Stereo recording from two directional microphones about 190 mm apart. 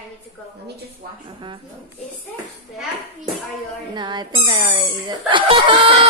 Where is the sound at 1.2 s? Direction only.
25° right (ahead or behind).